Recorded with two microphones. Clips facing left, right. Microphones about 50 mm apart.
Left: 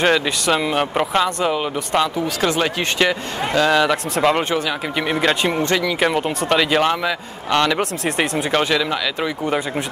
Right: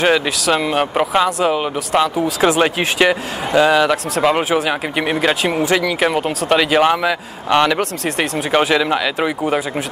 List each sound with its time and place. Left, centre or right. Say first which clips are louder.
0.0 s speech: right 2 dB; centre
8.0 s speech: even; centre
8.5 s speech: right 5 dB; centre